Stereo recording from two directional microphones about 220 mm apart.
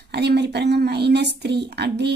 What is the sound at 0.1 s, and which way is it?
Speech, 50° right (ahead or behind).